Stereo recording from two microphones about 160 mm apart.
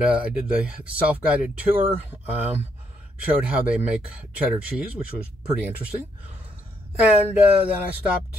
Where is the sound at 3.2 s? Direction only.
5° right (ahead or behind).